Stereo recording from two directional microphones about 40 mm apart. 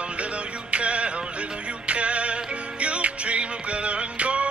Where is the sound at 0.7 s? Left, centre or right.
Right.